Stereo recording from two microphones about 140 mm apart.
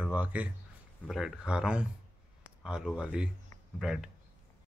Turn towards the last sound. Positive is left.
turn(degrees=-5)  # may be behind; listen again after turning